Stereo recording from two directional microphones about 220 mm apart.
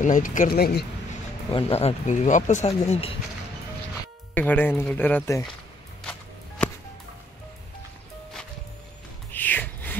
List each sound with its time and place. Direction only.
0.0 s speech: 35° left (ahead or behind)
1.5 s speech: 25° left (ahead or behind)
4.3 s speech: 5° left (ahead or behind)
9.3 s a sound: 10° left (ahead or behind)